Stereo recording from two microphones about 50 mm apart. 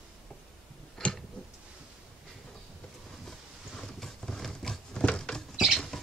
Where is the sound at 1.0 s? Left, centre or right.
Centre.